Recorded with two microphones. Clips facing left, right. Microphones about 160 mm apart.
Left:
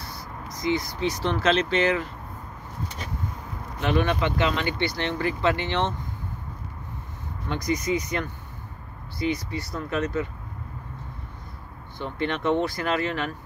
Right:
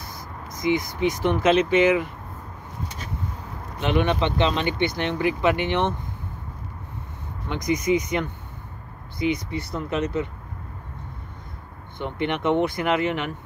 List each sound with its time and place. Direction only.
0.6 s speech: 15° right (ahead or behind)
3.8 s speech: 20° right (ahead or behind)
7.4 s speech: 20° right (ahead or behind)
12.0 s speech: 20° right (ahead or behind)